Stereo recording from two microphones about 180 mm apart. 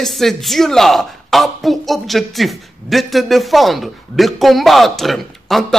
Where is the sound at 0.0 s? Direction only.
Centre (ahead or behind).